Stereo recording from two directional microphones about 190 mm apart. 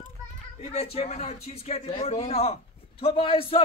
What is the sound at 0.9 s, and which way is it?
A man's voice, 35° left (ahead or behind).